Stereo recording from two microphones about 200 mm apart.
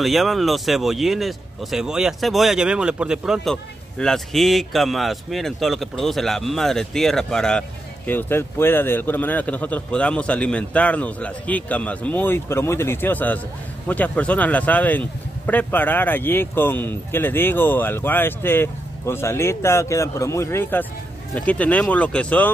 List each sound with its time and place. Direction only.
0.0 s speech: centre (ahead or behind)